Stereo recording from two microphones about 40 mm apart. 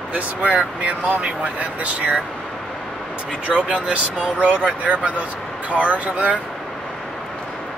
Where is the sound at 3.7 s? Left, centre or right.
Right.